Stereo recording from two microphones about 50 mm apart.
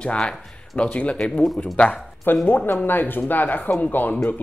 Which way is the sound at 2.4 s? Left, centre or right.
Left.